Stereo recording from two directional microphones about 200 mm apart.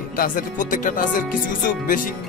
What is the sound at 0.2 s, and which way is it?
Speech, 40° left (ahead or behind).